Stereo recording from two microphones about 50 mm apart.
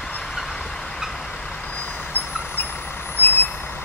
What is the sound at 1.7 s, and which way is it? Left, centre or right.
Vehicle, left.